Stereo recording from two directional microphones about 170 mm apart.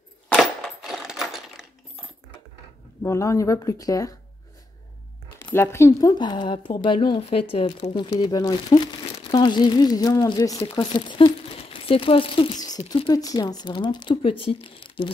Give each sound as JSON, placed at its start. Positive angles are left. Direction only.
{"t": 0.3, "sound": "coin", "side_deg": 0}
{"t": 3.0, "sound": "speech", "side_deg": 15}
{"t": 5.4, "sound": "speech", "side_deg": 15}